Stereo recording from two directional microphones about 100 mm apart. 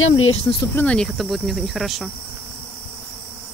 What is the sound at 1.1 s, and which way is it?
Speech, centre (ahead or behind).